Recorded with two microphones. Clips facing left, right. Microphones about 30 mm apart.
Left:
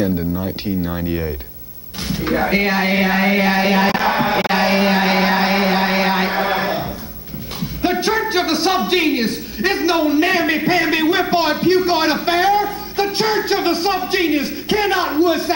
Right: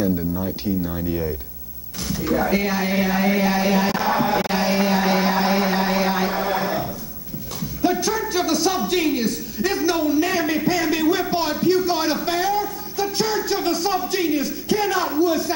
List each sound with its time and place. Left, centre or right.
0.8 s a man's voice: left